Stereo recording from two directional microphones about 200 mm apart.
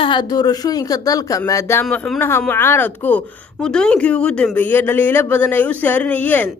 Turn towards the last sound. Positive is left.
turn(degrees=10)  # may be behind; listen again after turning